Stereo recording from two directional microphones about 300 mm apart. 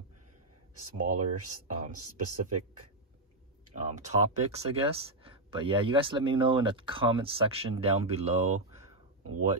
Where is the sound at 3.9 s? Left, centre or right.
Right.